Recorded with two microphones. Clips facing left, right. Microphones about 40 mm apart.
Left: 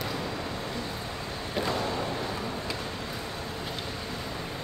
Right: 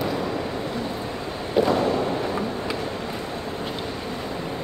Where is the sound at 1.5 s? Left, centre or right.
Centre.